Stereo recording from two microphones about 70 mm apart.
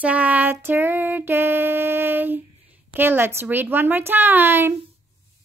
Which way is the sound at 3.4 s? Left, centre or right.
Right.